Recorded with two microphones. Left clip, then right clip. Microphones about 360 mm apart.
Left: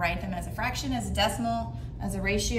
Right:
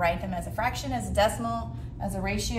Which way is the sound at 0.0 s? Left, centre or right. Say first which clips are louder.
Right 3 dB; centre.